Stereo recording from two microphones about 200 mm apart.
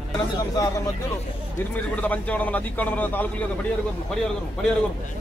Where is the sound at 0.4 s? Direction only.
15° left (ahead or behind).